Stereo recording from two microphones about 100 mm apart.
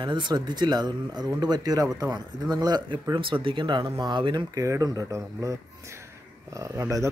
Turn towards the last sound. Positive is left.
turn(degrees=-35)  # may be behind; listen again after turning